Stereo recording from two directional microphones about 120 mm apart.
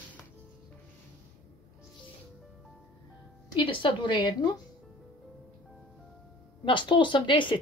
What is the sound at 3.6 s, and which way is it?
Speech, 45° left (ahead or behind).